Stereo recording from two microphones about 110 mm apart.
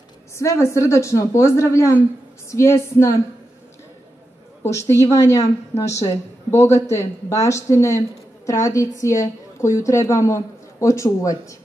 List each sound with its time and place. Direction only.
0.4 s a woman's voice: 25° left (ahead or behind)
4.6 s a woman's voice: 25° left (ahead or behind)